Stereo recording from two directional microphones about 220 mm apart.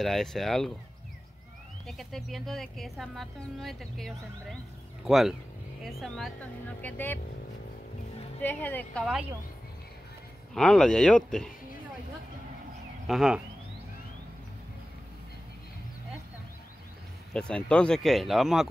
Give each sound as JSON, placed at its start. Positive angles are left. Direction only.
{"t": 0.0, "sound": "speech", "side_deg": 0}
{"t": 1.9, "sound": "a woman's voice", "side_deg": 0}
{"t": 8.4, "sound": "a woman's voice", "side_deg": 10}
{"t": 10.5, "sound": "speech", "side_deg": 5}
{"t": 13.0, "sound": "speech", "side_deg": 0}
{"t": 17.3, "sound": "speech", "side_deg": 5}